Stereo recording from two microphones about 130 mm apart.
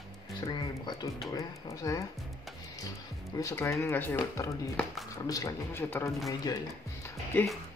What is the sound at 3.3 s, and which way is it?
Speech, 20° left (ahead or behind).